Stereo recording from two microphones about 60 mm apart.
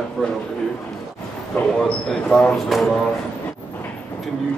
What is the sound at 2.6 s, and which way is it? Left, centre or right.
Speech, centre.